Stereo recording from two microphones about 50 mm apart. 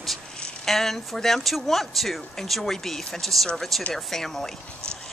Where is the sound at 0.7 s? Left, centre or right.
Centre.